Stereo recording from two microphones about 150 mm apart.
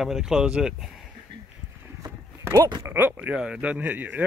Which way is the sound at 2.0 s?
20° right (ahead or behind).